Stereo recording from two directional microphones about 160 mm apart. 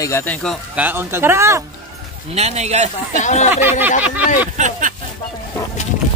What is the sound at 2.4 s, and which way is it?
Speech, 45° right (ahead or behind).